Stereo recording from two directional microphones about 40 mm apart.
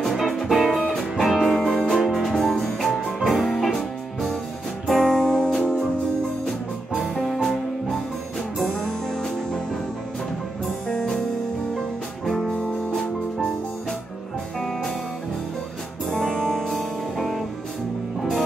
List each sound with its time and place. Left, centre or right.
0.0 s music: centre
2.3 s music: centre
7.2 s music: centre
10.9 s music: centre
12.3 s music: centre
16.1 s music: centre
16.6 s music: centre